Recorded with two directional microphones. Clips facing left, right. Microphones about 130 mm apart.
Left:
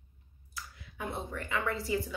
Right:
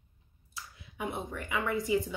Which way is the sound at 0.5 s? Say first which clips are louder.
Right 2 dB; 20° right (ahead or behind).